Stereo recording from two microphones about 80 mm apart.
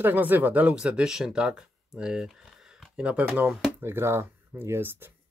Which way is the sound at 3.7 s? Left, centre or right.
Right.